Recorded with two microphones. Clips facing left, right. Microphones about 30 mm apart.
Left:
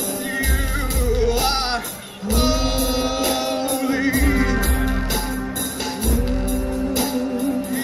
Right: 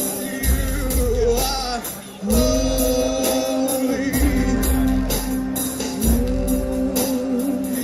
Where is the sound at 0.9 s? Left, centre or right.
Left.